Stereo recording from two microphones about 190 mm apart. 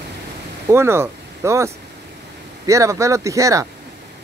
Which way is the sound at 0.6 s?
15° right (ahead or behind).